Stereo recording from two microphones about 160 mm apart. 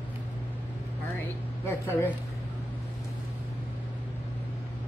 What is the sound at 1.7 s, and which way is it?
Speech, 15° left (ahead or behind).